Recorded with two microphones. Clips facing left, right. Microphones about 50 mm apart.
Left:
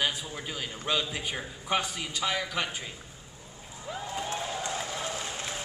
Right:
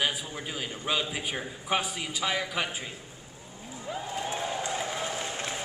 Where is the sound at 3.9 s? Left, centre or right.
Centre.